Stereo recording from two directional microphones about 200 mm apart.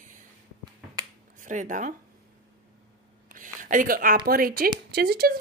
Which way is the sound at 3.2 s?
40° right (ahead or behind).